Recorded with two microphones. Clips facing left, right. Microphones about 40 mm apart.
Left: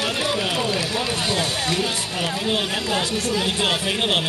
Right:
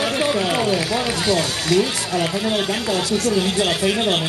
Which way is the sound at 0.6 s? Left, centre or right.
Centre.